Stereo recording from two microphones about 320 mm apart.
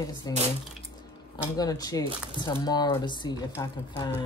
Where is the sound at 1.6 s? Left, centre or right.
Centre.